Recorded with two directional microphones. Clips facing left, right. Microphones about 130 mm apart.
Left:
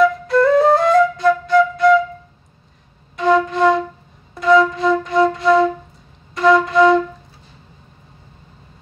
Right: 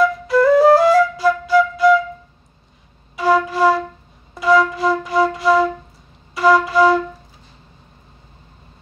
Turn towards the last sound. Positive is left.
turn(degrees=-5)  # may be behind; listen again after turning